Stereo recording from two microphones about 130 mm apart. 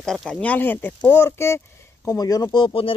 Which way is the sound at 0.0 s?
Centre (ahead or behind).